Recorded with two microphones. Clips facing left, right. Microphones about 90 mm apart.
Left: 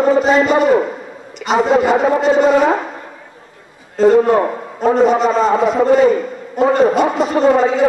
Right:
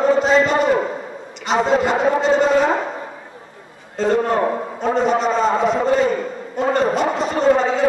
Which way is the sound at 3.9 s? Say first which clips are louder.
Left 7 dB; 5° left (ahead or behind).